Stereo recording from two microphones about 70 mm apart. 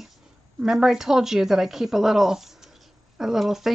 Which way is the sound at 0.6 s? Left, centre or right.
Centre.